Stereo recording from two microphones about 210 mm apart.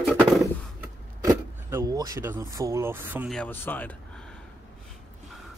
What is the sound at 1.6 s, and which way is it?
Speech, 15° right (ahead or behind).